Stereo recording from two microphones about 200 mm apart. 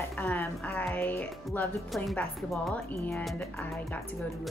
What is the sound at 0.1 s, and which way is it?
A woman's voice, 10° left (ahead or behind).